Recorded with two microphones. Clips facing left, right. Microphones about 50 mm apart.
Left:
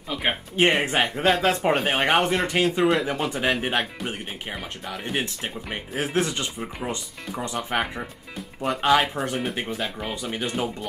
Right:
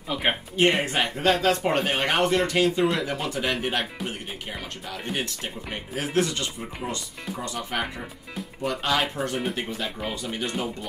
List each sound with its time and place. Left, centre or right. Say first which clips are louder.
0.1 s speech: right 1 dB; centre
0.8 s speech: left 2 dB; centre
2.8 s speech: left 3 dB; centre